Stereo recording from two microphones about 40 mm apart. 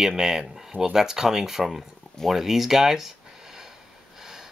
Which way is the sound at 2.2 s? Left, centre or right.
Centre.